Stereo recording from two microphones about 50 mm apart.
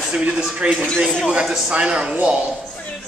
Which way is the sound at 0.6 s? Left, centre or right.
Right.